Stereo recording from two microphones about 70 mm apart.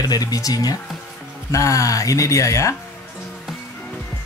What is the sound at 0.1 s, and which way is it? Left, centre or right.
Speech, left.